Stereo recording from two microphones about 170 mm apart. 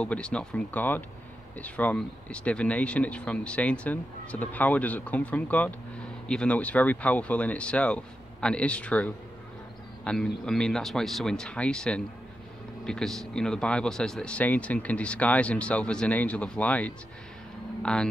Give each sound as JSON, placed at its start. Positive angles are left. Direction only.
{"t": 0.0, "sound": "a man's voice", "side_deg": 5}